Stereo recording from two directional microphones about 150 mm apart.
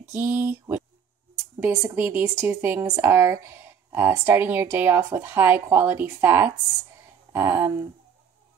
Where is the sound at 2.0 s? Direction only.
15° right (ahead or behind).